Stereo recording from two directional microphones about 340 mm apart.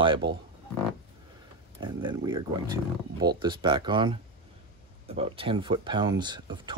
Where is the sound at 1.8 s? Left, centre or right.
Centre.